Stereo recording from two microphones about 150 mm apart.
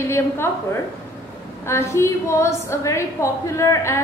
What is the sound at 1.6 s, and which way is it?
A woman's voice, 20° left (ahead or behind).